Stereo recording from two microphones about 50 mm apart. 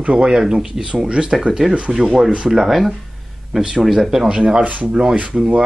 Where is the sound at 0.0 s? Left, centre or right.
Centre.